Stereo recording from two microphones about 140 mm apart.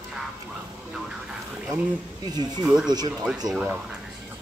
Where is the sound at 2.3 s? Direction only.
30° right (ahead or behind).